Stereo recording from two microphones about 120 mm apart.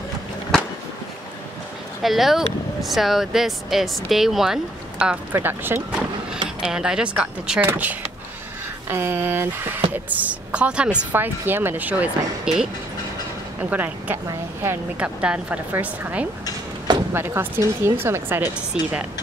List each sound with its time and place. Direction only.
2.0 s speech: centre (ahead or behind); by 6.0 s 15° right (ahead or behind)
6.6 s a woman's voice: 5° right (ahead or behind)